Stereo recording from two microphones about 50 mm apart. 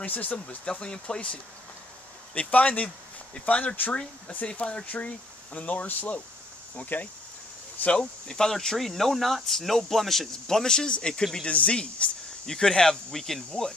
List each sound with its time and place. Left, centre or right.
0.0 s speech: left
0.7 s speech: centre